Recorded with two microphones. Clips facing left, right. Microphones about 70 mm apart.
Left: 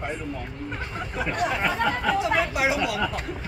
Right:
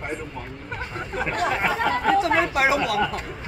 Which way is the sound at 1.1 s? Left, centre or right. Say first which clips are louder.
Right 2 dB; right.